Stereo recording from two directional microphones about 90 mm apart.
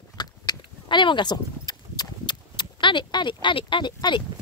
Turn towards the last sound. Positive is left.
turn(degrees=55)  # may be behind; listen again after turning